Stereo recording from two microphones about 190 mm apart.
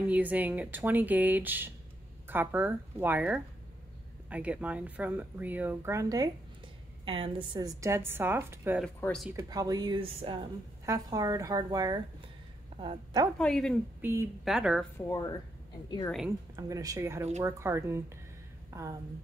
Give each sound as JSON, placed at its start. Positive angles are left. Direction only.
{"t": 0.1, "sound": "speech", "side_deg": -10}
{"t": 8.8, "sound": "speech", "side_deg": 5}
{"t": 9.3, "sound": "a woman's voice", "side_deg": -20}
{"t": 13.4, "sound": "speech", "side_deg": 5}
{"t": 14.0, "sound": "speech", "side_deg": -15}
{"t": 14.4, "sound": "speech", "side_deg": -5}
{"t": 15.0, "sound": "speech", "side_deg": 20}
{"t": 16.3, "sound": "speech", "side_deg": -15}